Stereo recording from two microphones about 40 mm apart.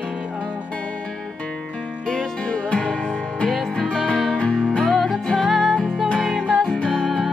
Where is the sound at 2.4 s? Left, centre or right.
Left.